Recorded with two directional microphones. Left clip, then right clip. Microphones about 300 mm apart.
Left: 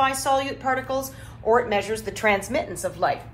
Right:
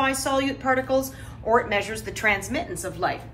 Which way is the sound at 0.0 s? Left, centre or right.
Centre.